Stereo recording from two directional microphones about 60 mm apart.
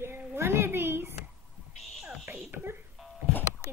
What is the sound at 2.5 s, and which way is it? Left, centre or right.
Speech, right.